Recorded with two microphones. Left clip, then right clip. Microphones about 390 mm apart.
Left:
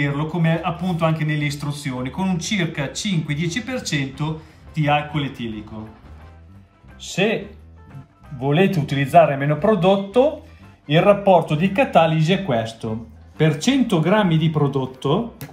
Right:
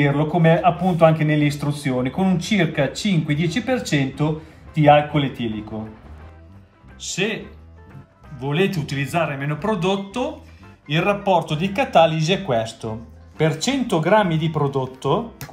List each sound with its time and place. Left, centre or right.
0.0 s a man's voice: centre
7.0 s a man's voice: centre
8.4 s a man's voice: centre